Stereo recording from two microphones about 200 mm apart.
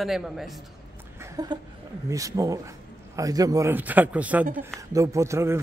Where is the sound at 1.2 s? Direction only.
20° right (ahead or behind).